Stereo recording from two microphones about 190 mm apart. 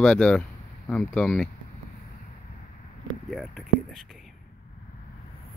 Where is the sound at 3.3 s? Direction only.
Centre (ahead or behind).